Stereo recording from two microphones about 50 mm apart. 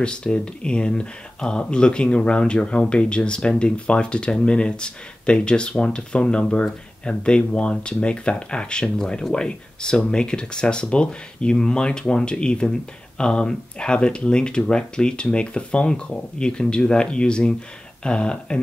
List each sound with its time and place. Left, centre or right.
0.0 s speech: centre